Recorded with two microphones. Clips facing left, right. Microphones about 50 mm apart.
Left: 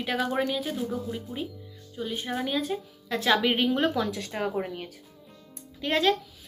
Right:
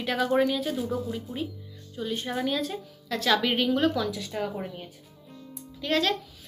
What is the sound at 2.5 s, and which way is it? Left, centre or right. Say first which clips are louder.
A woman's voice: even; centre.